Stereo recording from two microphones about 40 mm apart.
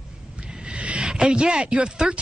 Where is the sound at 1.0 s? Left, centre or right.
Right.